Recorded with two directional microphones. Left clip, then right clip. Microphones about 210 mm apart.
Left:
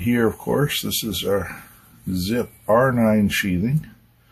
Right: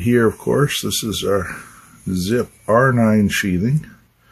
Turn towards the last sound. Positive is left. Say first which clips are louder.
# right 3 dB
turn(degrees=-35)  # may be behind; listen again after turning